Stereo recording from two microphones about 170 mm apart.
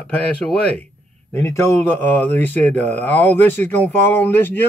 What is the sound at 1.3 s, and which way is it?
Speech, 15° left (ahead or behind).